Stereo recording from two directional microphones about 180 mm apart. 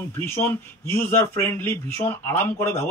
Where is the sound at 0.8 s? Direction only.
15° left (ahead or behind).